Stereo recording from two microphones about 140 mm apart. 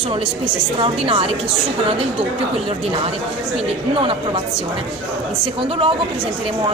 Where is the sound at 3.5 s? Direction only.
45° right (ahead or behind).